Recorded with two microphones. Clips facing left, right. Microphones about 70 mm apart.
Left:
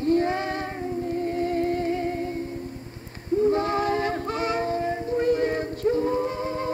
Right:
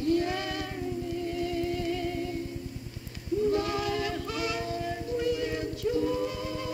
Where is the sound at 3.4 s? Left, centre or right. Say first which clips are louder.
Left 5 dB; left.